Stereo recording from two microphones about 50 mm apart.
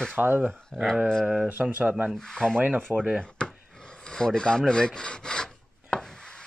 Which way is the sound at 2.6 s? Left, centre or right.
Right.